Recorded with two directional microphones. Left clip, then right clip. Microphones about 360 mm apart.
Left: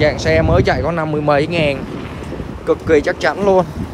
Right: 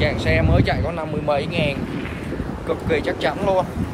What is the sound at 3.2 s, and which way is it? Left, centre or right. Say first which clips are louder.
Speech: left 3 dB; left.